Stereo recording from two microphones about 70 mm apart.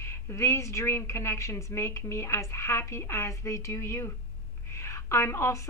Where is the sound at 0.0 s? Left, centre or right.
Left.